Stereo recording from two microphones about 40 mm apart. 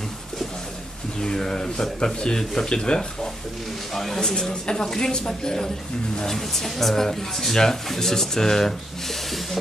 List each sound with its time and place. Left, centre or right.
1.2 s speech: centre
3.9 s speech: centre